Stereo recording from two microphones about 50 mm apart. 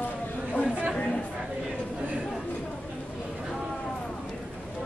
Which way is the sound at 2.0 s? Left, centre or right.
Right.